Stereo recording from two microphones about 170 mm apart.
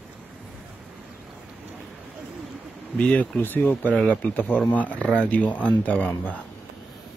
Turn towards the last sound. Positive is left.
turn(degrees=10)  # may be behind; listen again after turning